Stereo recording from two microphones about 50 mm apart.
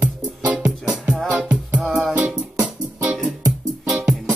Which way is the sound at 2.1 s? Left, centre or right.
Right.